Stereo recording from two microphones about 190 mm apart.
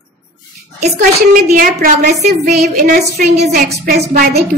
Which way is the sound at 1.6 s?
50° right (ahead or behind).